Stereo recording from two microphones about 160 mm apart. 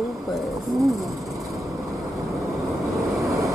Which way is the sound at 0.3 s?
Centre (ahead or behind).